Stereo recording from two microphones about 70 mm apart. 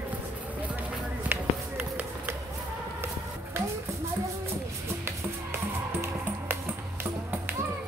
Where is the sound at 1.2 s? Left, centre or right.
Right.